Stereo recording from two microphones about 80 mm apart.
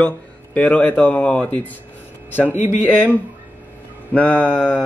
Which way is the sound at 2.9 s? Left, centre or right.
Centre.